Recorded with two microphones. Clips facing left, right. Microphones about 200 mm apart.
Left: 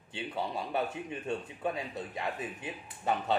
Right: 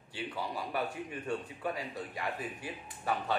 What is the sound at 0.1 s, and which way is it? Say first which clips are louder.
Speech: left 2 dB; 25° left (ahead or behind).